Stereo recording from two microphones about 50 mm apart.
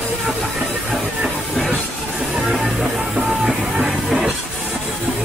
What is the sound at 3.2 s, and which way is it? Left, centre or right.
Music, centre.